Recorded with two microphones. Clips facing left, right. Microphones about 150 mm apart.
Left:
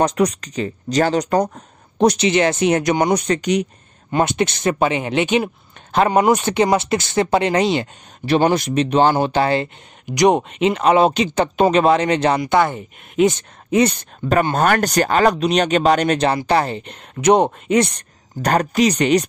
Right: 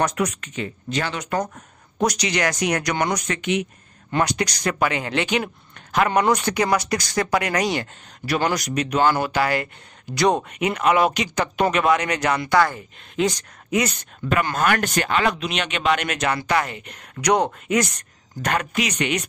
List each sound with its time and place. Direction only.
0.0 s speech: 30° left (ahead or behind)
4.1 s speech: 25° left (ahead or behind)